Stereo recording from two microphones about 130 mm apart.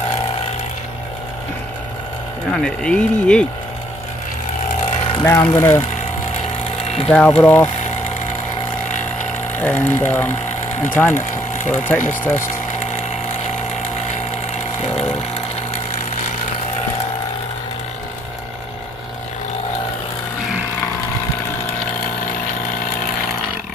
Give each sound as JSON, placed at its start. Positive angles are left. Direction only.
{"t": 2.5, "sound": "speech", "side_deg": 5}
{"t": 5.2, "sound": "speech", "side_deg": 20}
{"t": 7.1, "sound": "speech", "side_deg": 10}
{"t": 9.6, "sound": "speech", "side_deg": 15}